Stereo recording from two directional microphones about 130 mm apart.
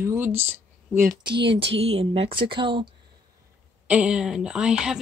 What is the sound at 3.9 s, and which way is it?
Speech, 10° right (ahead or behind).